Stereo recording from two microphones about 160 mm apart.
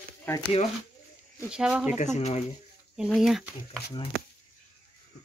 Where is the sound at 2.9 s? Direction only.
Centre (ahead or behind).